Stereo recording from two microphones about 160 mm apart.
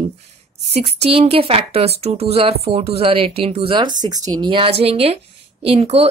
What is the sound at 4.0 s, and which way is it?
Speech, 25° right (ahead or behind).